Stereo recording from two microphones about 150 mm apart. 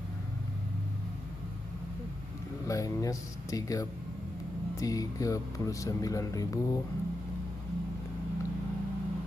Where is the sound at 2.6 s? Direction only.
20° left (ahead or behind).